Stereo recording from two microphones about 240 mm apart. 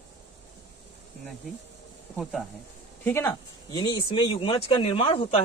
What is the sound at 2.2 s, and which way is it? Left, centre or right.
Speech, centre.